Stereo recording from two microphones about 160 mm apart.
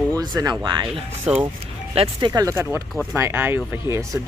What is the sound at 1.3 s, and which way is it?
Speech, 5° right (ahead or behind).